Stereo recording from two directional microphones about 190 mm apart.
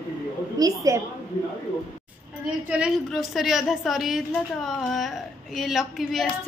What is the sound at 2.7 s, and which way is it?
A woman's voice, 5° right (ahead or behind).